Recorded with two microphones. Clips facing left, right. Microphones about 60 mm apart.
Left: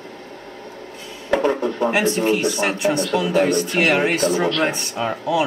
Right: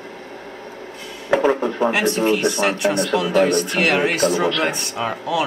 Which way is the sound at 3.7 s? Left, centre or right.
Left.